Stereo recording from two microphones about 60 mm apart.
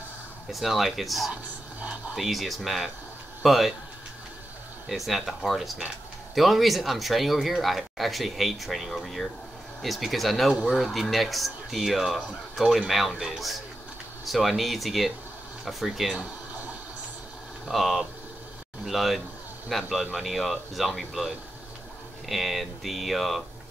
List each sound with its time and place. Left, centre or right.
0.5 s speech: centre
1.3 s whispering: right
2.1 s speech: centre
4.8 s speech: centre
17.6 s speech: centre